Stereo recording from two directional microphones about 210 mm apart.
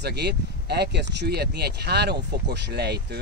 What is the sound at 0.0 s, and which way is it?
Speech, 50° right (ahead or behind).